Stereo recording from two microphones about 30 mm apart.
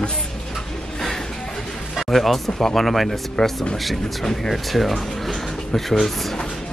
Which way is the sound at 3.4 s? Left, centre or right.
Left.